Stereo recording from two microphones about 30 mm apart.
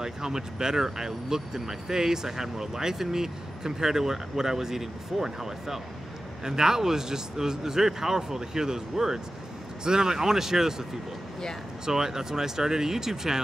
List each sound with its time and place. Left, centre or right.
0.0 s speech: centre